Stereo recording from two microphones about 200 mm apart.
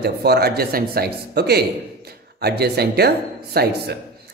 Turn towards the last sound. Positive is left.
turn(degrees=-50)  # may be behind; listen again after turning